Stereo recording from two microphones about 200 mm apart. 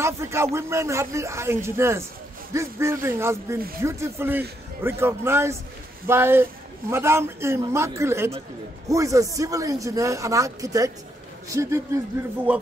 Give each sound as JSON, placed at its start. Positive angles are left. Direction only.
{"t": 0.0, "sound": "a man's voice", "side_deg": -15}